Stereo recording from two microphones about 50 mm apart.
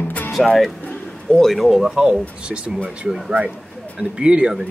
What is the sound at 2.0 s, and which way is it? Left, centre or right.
Speech, centre.